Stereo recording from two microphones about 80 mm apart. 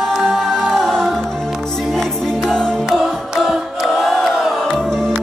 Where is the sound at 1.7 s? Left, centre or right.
Centre.